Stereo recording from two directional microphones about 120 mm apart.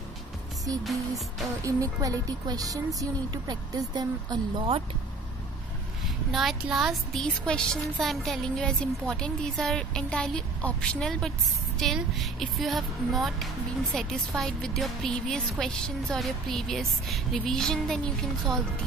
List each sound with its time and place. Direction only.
1.6 s a woman's voice: 25° right (ahead or behind)
6.3 s speech: centre (ahead or behind)